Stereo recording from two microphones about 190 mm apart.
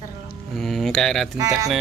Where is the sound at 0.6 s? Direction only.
Centre (ahead or behind).